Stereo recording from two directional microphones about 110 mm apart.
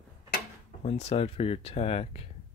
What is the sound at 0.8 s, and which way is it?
Speech, 80° left.